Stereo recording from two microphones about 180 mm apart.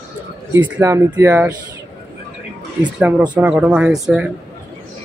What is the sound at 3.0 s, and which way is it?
Speech, 10° right (ahead or behind).